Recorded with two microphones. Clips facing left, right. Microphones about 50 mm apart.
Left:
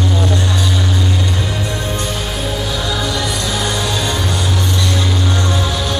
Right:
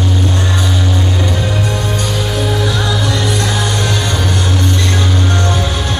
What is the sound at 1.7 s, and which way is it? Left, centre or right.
Music, right.